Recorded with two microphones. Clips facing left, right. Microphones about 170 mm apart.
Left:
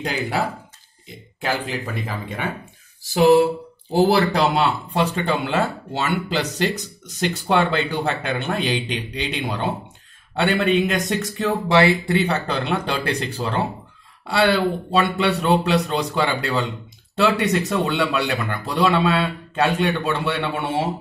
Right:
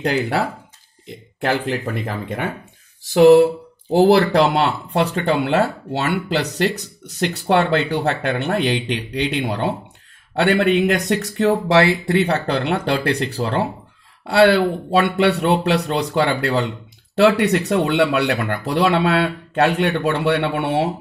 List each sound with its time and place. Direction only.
0.0 s speech: 60° right (ahead or behind)